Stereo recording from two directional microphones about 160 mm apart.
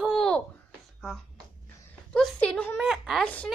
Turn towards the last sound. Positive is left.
turn(degrees=5)  # may be behind; listen again after turning